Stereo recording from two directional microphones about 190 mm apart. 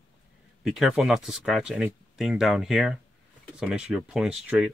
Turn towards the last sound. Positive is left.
turn(degrees=-5)  # may be behind; listen again after turning